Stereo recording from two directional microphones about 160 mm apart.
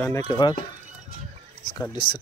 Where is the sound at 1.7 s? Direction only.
25° left (ahead or behind).